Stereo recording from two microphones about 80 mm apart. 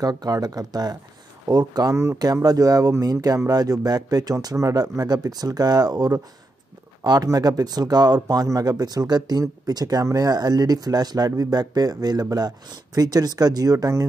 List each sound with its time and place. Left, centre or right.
0.0 s speech: right